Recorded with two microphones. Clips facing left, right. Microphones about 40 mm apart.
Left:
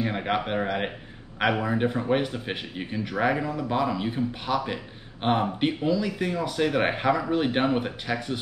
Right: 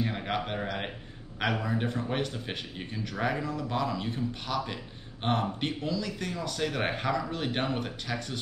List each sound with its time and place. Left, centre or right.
0.0 s speech: left